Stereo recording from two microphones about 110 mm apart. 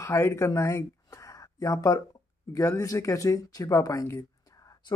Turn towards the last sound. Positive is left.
turn(degrees=25)  # may be behind; listen again after turning